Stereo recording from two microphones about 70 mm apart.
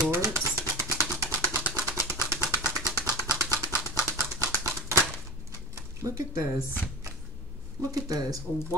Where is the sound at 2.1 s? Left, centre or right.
Right.